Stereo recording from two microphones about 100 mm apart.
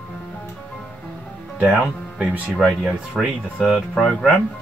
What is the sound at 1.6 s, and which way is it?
Speech, 10° right (ahead or behind).